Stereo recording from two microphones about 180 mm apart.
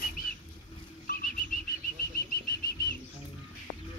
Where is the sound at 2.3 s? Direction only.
55° left (ahead or behind).